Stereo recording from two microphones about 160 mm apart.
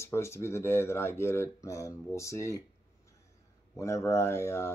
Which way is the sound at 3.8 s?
20° left (ahead or behind).